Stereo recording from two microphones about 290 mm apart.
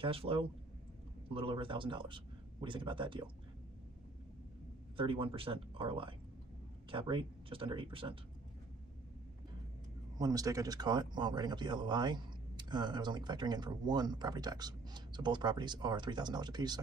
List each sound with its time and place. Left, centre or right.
0.0 s speech: centre
4.9 s speech: centre
10.1 s speech: centre